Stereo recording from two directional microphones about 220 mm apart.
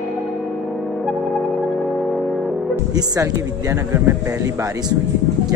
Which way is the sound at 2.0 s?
Centre (ahead or behind).